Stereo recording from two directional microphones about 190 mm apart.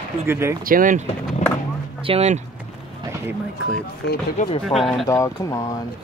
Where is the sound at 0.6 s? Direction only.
45° right (ahead or behind).